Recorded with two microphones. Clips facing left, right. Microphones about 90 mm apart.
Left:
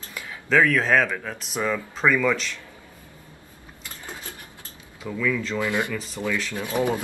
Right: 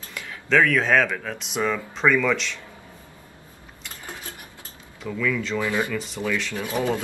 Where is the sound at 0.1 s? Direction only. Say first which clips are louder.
Even; 5° left (ahead or behind).